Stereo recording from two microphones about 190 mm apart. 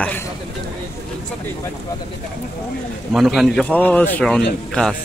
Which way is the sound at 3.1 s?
Centre (ahead or behind).